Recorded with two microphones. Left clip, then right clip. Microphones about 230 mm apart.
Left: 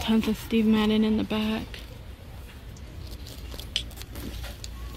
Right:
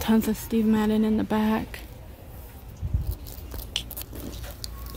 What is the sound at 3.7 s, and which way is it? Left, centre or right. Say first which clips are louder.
Biting: left 1 dB; right.